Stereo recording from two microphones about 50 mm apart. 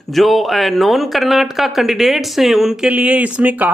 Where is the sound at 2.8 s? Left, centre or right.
Right.